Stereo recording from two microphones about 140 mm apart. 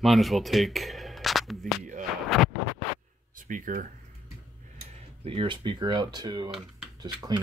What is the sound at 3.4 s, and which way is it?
Speech, 70° right (ahead or behind).